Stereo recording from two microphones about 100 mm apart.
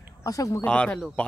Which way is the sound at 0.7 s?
10° left (ahead or behind).